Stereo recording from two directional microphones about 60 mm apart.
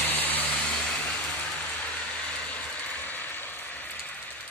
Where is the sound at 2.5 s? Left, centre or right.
Left.